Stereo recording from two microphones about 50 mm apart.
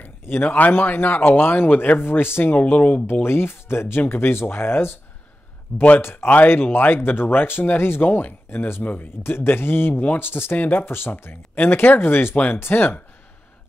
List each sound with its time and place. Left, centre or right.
0.0 s speech: left
2.6 s speech: left
8.8 s speech: left
9.2 s speech: left